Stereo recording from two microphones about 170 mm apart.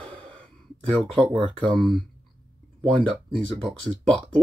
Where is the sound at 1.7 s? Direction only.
Centre (ahead or behind).